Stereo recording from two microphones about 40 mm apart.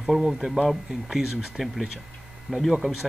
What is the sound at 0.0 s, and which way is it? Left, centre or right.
Speech, centre.